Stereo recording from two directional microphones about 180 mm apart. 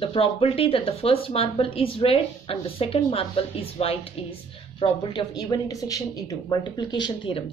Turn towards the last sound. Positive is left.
turn(degrees=25)  # may be behind; listen again after turning